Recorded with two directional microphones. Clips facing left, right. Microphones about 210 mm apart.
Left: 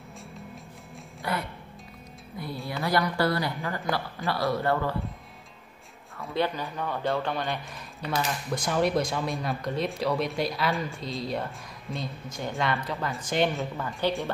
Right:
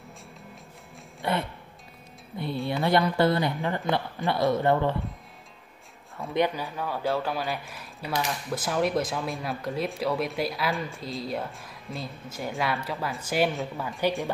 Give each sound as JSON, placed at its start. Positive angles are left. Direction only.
{"t": 1.2, "sound": "music", "side_deg": -25}
{"t": 2.7, "sound": "speech", "side_deg": -25}
{"t": 6.3, "sound": "speech", "side_deg": -15}